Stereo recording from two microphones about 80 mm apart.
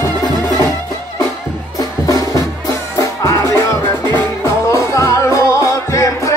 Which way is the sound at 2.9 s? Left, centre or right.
Left.